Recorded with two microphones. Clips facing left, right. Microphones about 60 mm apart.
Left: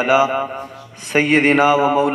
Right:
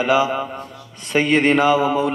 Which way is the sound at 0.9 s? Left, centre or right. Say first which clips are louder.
Left 2 dB; left.